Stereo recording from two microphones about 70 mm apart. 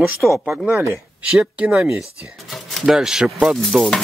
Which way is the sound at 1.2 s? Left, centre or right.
Centre.